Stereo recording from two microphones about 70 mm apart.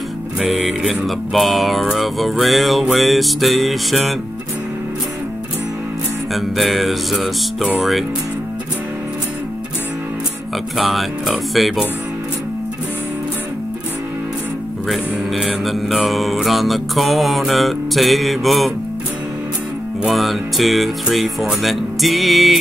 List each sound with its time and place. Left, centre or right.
0.4 s music: centre
6.3 s music: centre
10.8 s music: centre
14.9 s music: centre
20.1 s music: centre